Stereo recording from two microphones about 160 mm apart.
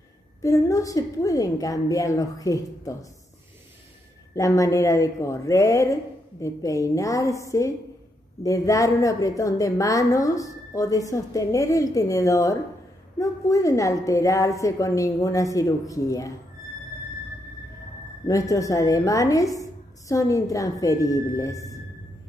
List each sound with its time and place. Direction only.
0.4 s a woman's voice: 20° left (ahead or behind)
4.4 s a woman's voice: 20° left (ahead or behind)
18.2 s a woman's voice: 20° left (ahead or behind)